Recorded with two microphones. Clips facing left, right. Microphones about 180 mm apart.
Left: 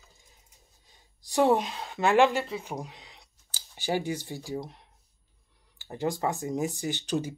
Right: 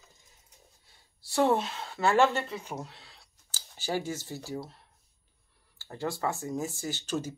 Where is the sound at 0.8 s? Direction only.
15° left (ahead or behind).